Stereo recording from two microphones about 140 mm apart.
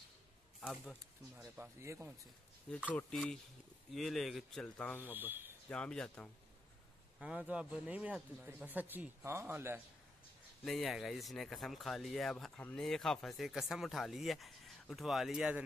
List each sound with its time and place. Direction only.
0.6 s speech: centre (ahead or behind)
1.4 s speech: 20° right (ahead or behind)
2.9 s speech: 10° left (ahead or behind)
5.0 s speech: 15° right (ahead or behind)
5.7 s speech: 5° left (ahead or behind)
7.2 s speech: 5° right (ahead or behind)
10.6 s speech: centre (ahead or behind)